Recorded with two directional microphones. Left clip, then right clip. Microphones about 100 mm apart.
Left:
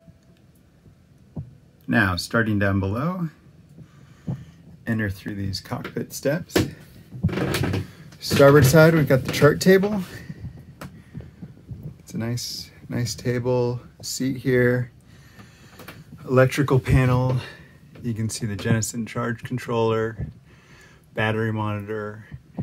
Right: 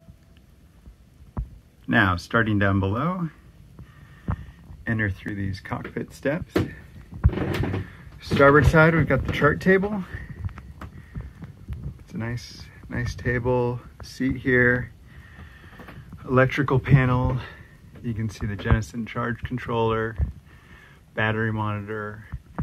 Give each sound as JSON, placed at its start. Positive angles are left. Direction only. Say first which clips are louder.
{"t": 1.9, "sound": "speech", "louder": "right 1 dB", "side_deg": 10}
{"t": 4.8, "sound": "speech", "louder": "right 1 dB", "side_deg": 20}
{"t": 8.2, "sound": "speech", "louder": "left 2 dB", "side_deg": 35}
{"t": 12.1, "sound": "speech", "louder": "left 4 dB", "side_deg": 25}